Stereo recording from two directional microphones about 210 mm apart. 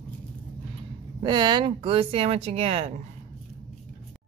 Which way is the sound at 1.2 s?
20° right (ahead or behind).